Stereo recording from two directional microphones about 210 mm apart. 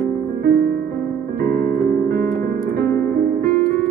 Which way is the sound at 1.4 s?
45° right (ahead or behind).